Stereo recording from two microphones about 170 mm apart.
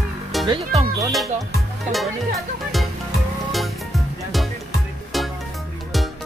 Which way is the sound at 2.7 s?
Centre (ahead or behind).